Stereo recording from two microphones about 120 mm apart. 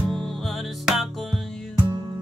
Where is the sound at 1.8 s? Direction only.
40° right (ahead or behind).